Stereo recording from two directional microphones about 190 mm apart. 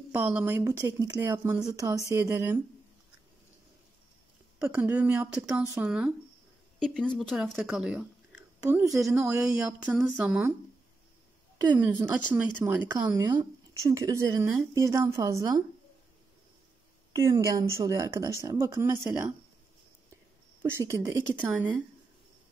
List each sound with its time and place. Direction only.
0.1 s speech: 5° right (ahead or behind)
4.6 s speech: 10° right (ahead or behind)
11.5 s a sound: 20° right (ahead or behind)
11.8 s speech: 10° right (ahead or behind)
17.1 s speech: 15° right (ahead or behind)
20.7 s speech: 15° right (ahead or behind)